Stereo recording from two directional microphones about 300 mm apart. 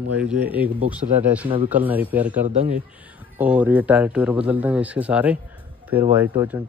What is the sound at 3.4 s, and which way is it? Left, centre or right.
A man's voice, centre.